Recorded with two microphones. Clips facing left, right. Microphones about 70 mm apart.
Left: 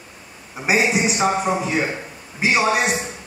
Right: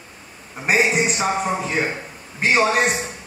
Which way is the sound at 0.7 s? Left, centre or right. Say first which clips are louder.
Even; centre.